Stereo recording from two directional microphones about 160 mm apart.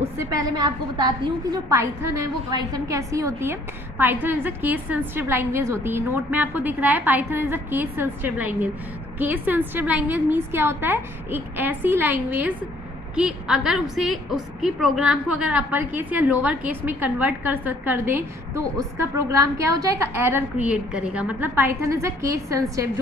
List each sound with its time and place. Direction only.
0.4 s a woman's voice: 25° right (ahead or behind)